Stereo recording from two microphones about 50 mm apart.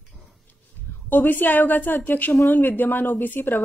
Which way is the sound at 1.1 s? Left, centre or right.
Left.